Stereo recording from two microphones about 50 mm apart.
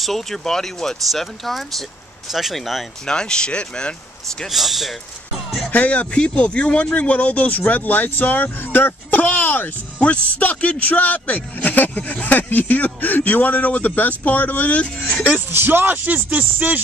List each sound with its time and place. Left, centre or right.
0.0 s speech: centre
3.1 s speech: centre
4.5 s speech: centre
5.7 s speech: left
9.2 s a sound: left
9.9 s speech: left
10.3 s speech: left
15.3 s speech: right